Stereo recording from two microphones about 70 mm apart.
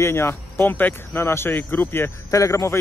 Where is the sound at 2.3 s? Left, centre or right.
Left.